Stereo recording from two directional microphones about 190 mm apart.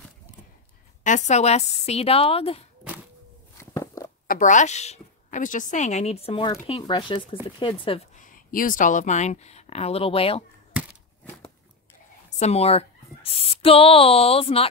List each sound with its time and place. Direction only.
1.0 s speech: 40° left (ahead or behind)
3.5 s a sound: 15° left (ahead or behind)
4.3 s a woman's voice: 40° left (ahead or behind); by 8.0 s 25° left (ahead or behind)
8.2 s speech: 45° left (ahead or behind); by 10.4 s 30° left (ahead or behind)
12.4 s speech: 35° left (ahead or behind)